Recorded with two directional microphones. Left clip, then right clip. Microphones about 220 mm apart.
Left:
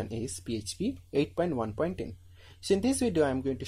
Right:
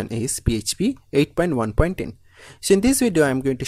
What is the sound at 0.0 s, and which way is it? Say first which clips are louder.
Speech: right 10 dB; 30° right (ahead or behind).